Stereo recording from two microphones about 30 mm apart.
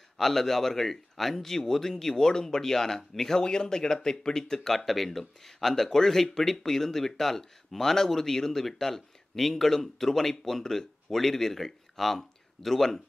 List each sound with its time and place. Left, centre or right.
0.2 s speech: centre
3.4 s speech: left
4.7 s speech: centre